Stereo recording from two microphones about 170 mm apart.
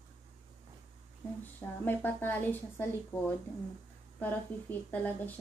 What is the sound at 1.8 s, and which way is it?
A woman's voice, 10° left (ahead or behind).